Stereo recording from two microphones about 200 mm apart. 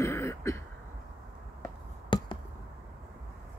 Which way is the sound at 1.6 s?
20° left (ahead or behind).